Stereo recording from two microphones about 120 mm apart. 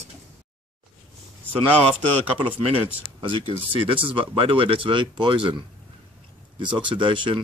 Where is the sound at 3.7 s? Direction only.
45° right (ahead or behind).